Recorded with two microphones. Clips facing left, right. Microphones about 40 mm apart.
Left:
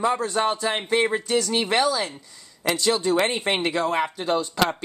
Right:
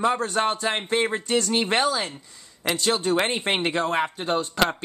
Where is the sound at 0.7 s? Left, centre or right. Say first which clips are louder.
Left 2 dB; centre.